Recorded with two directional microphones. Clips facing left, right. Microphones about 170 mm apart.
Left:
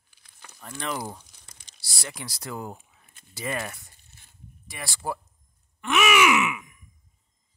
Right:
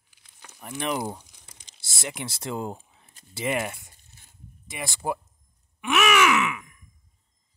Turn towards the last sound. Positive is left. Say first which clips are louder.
# left 1 dB
turn(degrees=10)  # may be behind; listen again after turning